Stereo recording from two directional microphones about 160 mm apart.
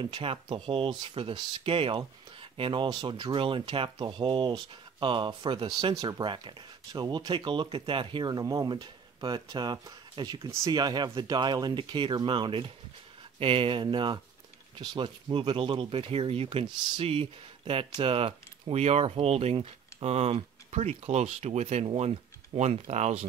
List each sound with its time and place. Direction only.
0.0 s speech: 35° right (ahead or behind)